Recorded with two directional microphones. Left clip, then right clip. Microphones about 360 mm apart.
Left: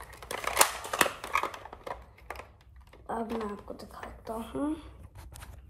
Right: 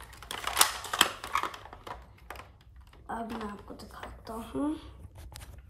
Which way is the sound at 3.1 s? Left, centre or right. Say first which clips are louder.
Left 3 dB; centre.